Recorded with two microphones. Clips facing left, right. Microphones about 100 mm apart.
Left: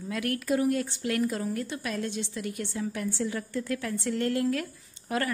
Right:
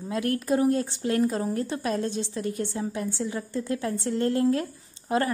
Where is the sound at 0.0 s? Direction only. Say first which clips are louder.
Right 4 dB; 30° right (ahead or behind).